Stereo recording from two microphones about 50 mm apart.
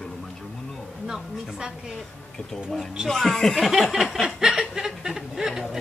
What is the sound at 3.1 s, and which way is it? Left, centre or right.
Speech, centre.